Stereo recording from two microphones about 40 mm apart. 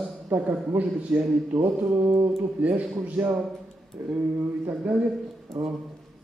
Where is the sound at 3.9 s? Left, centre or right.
Right.